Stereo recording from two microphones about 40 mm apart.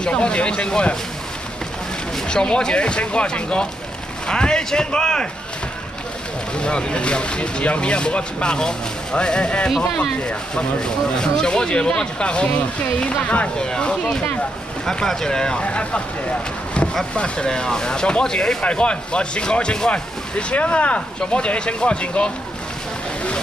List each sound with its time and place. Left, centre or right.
0.1 s speech: left
2.2 s speech: left
6.5 s speech: left
13.6 s speech: left
15.6 s speech: left
17.1 s speech: left
17.5 s speech: centre